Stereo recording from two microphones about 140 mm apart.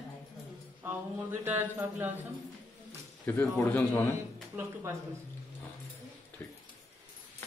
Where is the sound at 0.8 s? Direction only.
15° right (ahead or behind).